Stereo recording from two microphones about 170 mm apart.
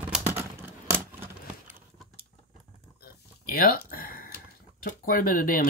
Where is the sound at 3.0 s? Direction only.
60° left (ahead or behind).